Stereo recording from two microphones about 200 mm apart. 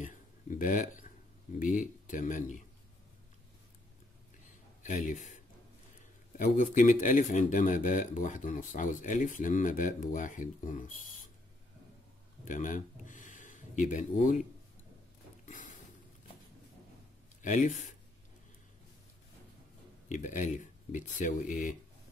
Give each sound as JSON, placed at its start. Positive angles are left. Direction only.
{"t": 0.0, "sound": "a sound", "side_deg": 40}
{"t": 1.6, "sound": "speech", "side_deg": 40}
{"t": 4.8, "sound": "speech", "side_deg": 40}
{"t": 6.3, "sound": "speech", "side_deg": 40}
{"t": 12.4, "sound": "speech", "side_deg": 40}
{"t": 15.4, "sound": "a sound", "side_deg": 40}
{"t": 17.4, "sound": "speech", "side_deg": 35}
{"t": 20.1, "sound": "speech", "side_deg": 40}